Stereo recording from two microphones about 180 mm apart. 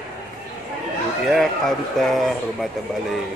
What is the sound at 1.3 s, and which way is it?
A man's voice, centre (ahead or behind).